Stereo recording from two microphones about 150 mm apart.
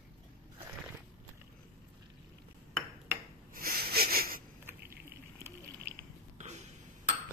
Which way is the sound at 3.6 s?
80° right.